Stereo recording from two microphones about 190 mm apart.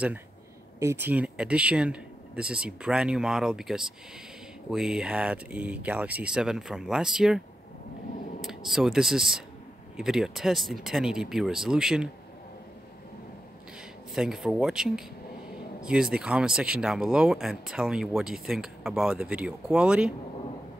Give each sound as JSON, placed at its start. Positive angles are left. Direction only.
{"t": 0.7, "sound": "speech", "side_deg": -15}
{"t": 14.1, "sound": "speech", "side_deg": -5}